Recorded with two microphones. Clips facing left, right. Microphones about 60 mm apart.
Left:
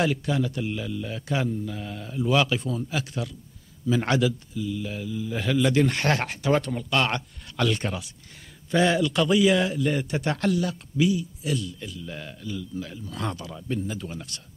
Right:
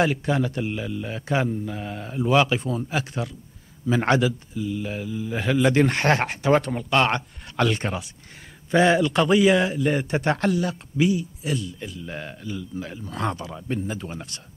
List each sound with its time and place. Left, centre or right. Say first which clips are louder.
0.4 s a man's voice: right 2 dB; right
5.2 s a man's voice: right 2 dB; right
5.6 s a man's voice: right 3 dB; right
9.8 s a man's voice: right 3 dB; right
11.0 s speech: right 1 dB; right
11.8 s a man's voice: right 3 dB; right